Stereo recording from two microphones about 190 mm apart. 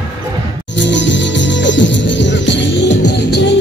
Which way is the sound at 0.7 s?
70° left (ahead or behind).